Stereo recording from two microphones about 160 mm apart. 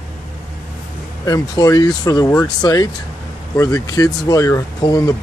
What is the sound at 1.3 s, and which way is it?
Speech, 25° left (ahead or behind).